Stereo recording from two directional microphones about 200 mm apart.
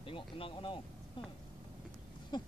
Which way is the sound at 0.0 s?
25° left (ahead or behind).